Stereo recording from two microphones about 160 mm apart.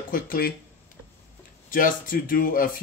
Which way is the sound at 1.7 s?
60° left (ahead or behind).